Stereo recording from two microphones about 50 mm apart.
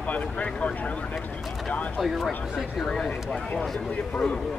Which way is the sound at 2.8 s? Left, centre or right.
Centre.